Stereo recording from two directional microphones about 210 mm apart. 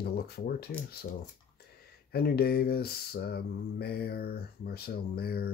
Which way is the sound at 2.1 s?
50° left (ahead or behind).